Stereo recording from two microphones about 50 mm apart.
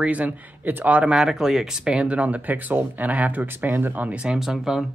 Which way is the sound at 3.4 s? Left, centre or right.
Right.